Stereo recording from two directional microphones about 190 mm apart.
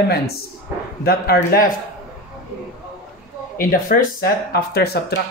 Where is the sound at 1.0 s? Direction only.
55° left (ahead or behind).